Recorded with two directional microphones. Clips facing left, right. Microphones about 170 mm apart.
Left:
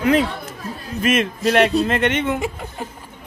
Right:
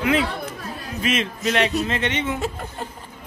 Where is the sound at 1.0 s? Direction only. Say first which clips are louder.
Left 5 dB; 55° left (ahead or behind).